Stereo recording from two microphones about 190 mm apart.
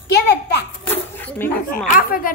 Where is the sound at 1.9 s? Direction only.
45° left (ahead or behind).